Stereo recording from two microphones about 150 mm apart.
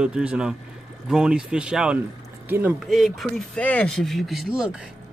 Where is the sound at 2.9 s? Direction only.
Centre (ahead or behind).